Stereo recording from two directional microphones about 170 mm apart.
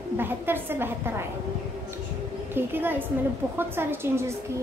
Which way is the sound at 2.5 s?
10° right (ahead or behind).